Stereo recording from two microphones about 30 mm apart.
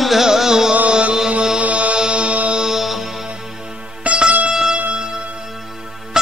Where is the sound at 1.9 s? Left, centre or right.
Right.